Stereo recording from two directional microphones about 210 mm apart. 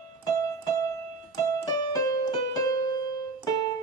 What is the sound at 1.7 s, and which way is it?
Keyboard, 20° left (ahead or behind).